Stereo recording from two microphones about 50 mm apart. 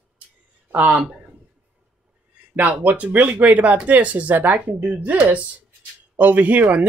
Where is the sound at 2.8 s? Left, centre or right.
Right.